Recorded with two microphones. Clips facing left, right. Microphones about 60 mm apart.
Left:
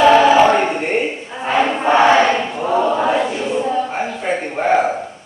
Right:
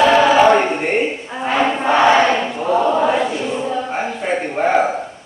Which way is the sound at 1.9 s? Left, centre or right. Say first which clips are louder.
Left 1 dB; centre.